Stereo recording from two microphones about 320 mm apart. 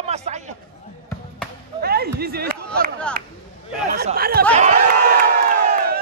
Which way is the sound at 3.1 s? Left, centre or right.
Centre.